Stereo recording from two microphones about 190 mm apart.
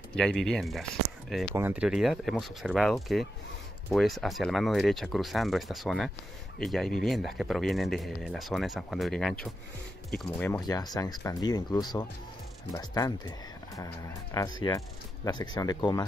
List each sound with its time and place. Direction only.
0.1 s speech: 5° left (ahead or behind)
1.5 s speech: 10° right (ahead or behind); by 10.6 s 5° left (ahead or behind)
10.7 s speech: 20° left (ahead or behind)
14.3 s speech: 20° left (ahead or behind)